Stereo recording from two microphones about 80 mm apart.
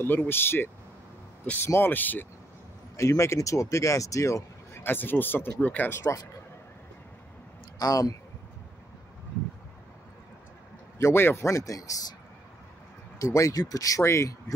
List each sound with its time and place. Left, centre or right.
0.0 s speech: left
3.0 s speech: left
4.8 s speech: left
7.8 s speech: left
11.0 s speech: left
13.2 s speech: left